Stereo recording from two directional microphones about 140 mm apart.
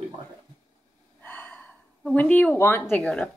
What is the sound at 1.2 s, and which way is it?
A woman's voice, 10° left (ahead or behind).